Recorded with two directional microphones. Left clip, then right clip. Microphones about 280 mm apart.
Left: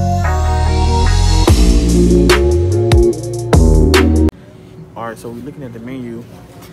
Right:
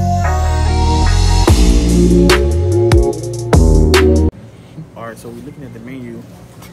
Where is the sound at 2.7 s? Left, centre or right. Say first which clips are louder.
Even; centre.